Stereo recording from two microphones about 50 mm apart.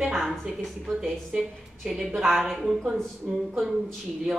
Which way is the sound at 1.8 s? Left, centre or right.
Centre.